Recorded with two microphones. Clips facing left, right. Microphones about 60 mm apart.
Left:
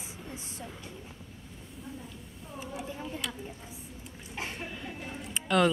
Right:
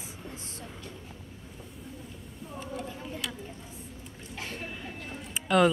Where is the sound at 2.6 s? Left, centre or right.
Centre.